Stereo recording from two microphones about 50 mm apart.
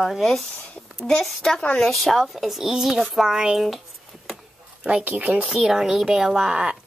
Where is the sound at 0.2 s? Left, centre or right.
Centre.